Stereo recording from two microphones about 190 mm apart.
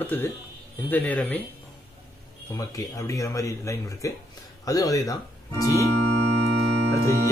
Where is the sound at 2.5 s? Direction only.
15° left (ahead or behind).